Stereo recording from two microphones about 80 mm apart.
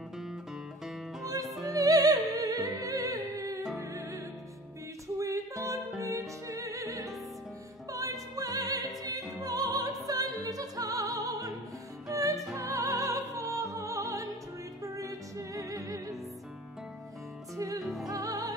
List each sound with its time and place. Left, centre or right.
1.2 s music: right
5.0 s music: right
7.9 s opera: right
9.4 s music: right
17.6 s music: right